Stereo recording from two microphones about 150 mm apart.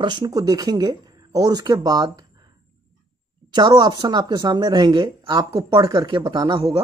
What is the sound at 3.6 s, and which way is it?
Speech, 25° right (ahead or behind).